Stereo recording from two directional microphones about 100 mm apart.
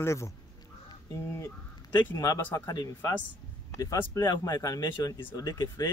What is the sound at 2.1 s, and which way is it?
Speech, 35° left (ahead or behind).